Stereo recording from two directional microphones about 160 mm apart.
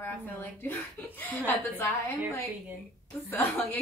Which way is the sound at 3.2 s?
15° left (ahead or behind).